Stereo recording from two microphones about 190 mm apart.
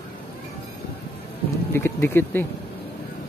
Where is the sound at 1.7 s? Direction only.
10° left (ahead or behind).